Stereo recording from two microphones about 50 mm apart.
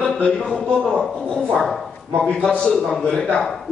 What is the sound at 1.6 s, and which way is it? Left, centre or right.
A man's voice, centre.